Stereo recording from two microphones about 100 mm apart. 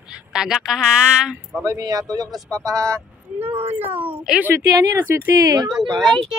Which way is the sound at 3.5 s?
90° right.